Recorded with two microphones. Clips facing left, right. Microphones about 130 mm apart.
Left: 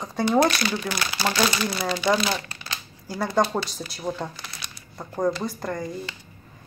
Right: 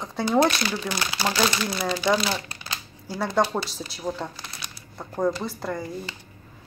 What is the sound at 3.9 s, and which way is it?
Speech, centre (ahead or behind).